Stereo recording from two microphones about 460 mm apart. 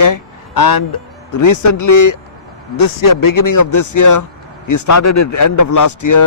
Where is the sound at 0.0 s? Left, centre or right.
Left.